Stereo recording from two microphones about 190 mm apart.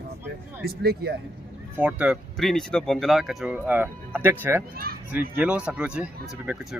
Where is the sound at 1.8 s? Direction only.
5° right (ahead or behind).